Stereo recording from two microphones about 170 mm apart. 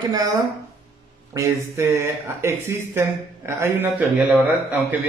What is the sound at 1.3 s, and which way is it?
A man's voice, 15° right (ahead or behind).